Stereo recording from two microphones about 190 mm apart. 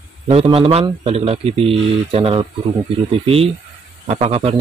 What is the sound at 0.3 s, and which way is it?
Speech, 30° right (ahead or behind).